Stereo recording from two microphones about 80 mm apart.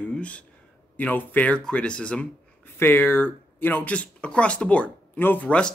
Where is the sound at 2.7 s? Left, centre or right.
Left.